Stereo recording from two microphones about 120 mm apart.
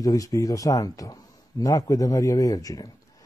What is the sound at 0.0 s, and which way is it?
Speech, 30° left (ahead or behind).